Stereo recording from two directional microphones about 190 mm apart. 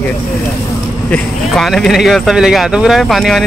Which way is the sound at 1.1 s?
Centre (ahead or behind).